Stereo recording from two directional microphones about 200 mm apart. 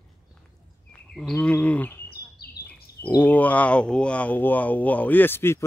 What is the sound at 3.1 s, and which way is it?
Speech, 10° left (ahead or behind).